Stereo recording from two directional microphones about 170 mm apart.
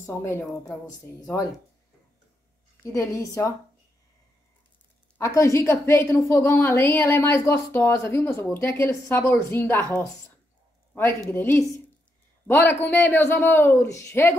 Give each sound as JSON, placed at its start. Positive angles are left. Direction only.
{"t": 0.0, "sound": "a woman's voice", "side_deg": 15}
{"t": 2.8, "sound": "a woman's voice", "side_deg": 20}
{"t": 5.1, "sound": "a woman's voice", "side_deg": 15}